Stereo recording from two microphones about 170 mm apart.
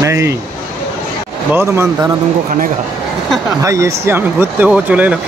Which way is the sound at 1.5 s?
15° right (ahead or behind).